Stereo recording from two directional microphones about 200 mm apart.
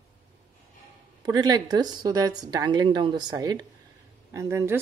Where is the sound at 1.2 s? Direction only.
20° right (ahead or behind).